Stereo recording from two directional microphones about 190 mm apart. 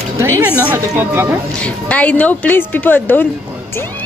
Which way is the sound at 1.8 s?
5° left (ahead or behind).